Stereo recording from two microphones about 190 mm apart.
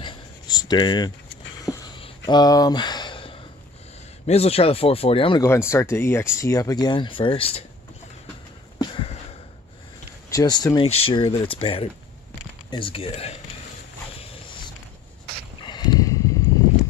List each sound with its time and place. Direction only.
0.0 s a sound: 20° left (ahead or behind)
4.3 s speech: 30° left (ahead or behind)
5.5 s speech: 15° left (ahead or behind); by 7.6 s 30° left (ahead or behind)
8.7 s sniff: 25° left (ahead or behind)
10.3 s speech: 20° left (ahead or behind)
15.6 s a sound: 25° left (ahead or behind)